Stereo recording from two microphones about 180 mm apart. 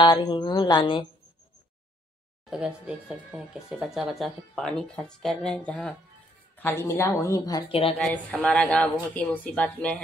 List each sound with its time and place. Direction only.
0.0 s speech: 25° left (ahead or behind)
2.5 s speech: 5° right (ahead or behind); by 7.6 s 20° left (ahead or behind)
8.0 s speech: 5° left (ahead or behind)